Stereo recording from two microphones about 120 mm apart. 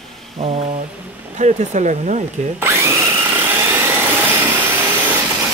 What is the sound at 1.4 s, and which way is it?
Speech, 75° right (ahead or behind).